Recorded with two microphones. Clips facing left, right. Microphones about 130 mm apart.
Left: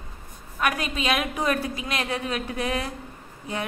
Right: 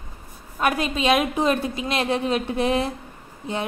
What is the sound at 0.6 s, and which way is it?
A woman's voice, 30° right (ahead or behind).